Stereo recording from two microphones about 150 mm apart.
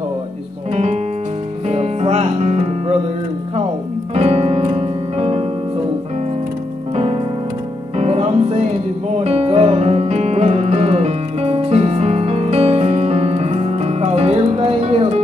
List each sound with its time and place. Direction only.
1.7 s music: 45° right (ahead or behind)
4.1 s piano: 45° right (ahead or behind)
8.0 s music: 45° right (ahead or behind)